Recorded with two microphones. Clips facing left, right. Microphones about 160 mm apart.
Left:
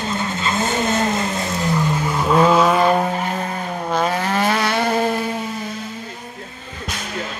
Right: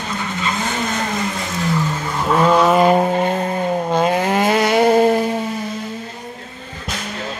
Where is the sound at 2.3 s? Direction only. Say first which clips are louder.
Right 1 dB; centre (ahead or behind).